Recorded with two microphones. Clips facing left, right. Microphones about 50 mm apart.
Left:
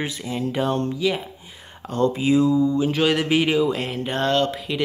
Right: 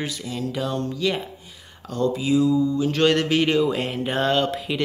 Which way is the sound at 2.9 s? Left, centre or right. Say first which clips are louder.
Even; centre.